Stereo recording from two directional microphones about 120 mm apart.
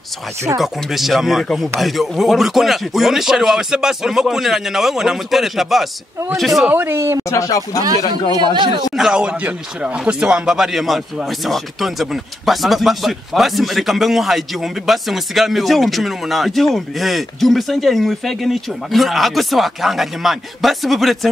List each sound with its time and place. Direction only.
0.6 s speech: centre (ahead or behind)
6.7 s speech: 20° right (ahead or behind)
7.2 s speech: 25° left (ahead or behind)
8.5 s speech: 40° right (ahead or behind)
8.9 s speech: 5° right (ahead or behind)